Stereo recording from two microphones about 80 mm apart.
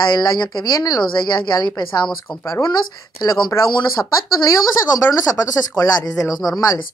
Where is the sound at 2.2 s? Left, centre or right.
Left.